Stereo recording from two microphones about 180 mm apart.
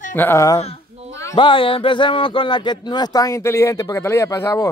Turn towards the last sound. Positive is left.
turn(degrees=15)  # may be behind; listen again after turning